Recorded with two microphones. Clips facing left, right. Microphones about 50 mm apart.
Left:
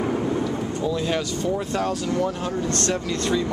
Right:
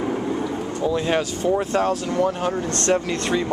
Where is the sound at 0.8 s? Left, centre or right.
Right.